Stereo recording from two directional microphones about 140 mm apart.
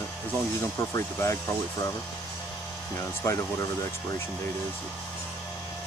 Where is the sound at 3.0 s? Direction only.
20° left (ahead or behind).